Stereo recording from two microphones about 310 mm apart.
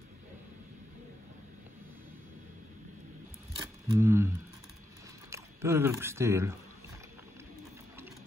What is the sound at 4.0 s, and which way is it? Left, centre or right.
Speech, centre.